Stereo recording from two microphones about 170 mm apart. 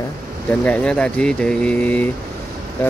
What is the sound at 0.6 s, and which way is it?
Speech, 5° left (ahead or behind).